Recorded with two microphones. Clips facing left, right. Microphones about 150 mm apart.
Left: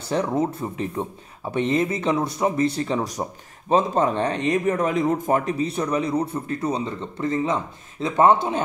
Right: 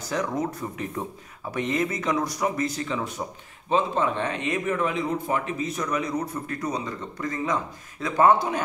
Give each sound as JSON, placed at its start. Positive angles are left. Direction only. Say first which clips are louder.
{"t": 0.0, "sound": "speech", "louder": "left 4 dB", "side_deg": 30}